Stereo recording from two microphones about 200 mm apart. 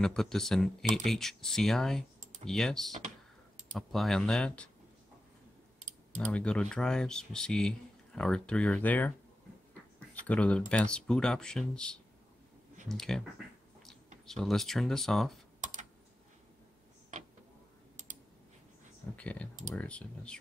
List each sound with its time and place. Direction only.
0.0 s speech: centre (ahead or behind)
6.1 s speech: 5° left (ahead or behind)
10.2 s speech: 5° left (ahead or behind)
15.6 s typing: 40° right (ahead or behind)
19.1 s speech: 5° left (ahead or behind)